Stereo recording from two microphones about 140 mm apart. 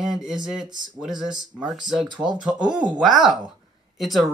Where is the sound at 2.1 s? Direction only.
30° right (ahead or behind).